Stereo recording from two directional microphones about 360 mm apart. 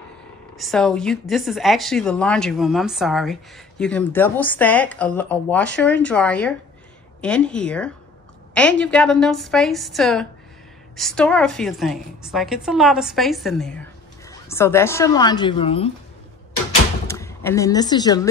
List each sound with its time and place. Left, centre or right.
0.6 s speech: centre
17.1 s speech: centre